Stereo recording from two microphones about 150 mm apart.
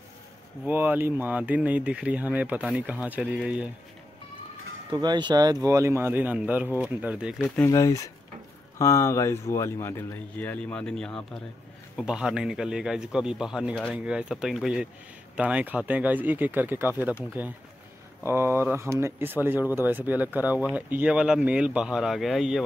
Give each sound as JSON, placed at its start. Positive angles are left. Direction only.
{"t": 0.7, "sound": "speech", "side_deg": -15}
{"t": 4.9, "sound": "speech", "side_deg": -30}
{"t": 7.4, "sound": "speech", "side_deg": 10}
{"t": 7.7, "sound": "a man's voice", "side_deg": 20}